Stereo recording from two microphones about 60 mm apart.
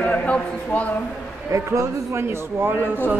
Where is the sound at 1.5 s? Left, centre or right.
Right.